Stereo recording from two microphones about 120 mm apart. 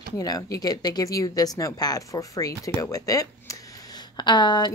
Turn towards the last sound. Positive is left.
turn(degrees=35)  # may be behind; listen again after turning